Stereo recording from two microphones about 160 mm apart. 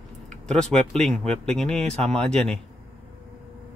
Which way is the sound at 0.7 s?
Centre (ahead or behind).